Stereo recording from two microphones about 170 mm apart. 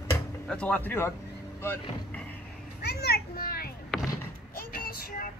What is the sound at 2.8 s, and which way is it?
Children playing, 70° left (ahead or behind).